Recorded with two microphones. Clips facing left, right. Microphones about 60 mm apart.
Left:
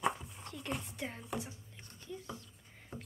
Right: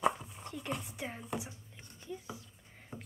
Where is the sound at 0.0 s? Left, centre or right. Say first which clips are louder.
Right 3 dB; centre.